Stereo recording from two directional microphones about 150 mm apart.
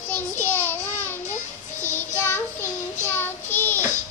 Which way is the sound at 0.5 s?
15° left (ahead or behind).